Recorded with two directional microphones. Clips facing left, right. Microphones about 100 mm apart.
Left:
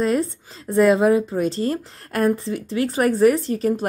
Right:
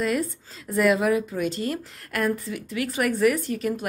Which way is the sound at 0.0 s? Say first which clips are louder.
Left 5 dB; 30° left (ahead or behind).